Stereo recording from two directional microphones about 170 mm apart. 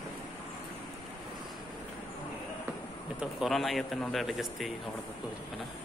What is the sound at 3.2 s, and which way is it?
Speech, centre (ahead or behind).